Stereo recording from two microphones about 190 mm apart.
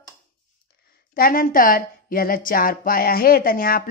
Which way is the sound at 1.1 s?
50° left (ahead or behind).